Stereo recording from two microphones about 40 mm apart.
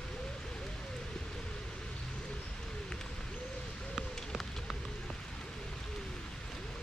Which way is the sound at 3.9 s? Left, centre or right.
Centre.